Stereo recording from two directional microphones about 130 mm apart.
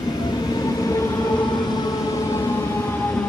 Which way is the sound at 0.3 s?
30° left (ahead or behind).